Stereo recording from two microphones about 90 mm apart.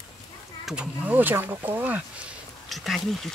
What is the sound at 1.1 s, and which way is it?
Speech, 20° right (ahead or behind).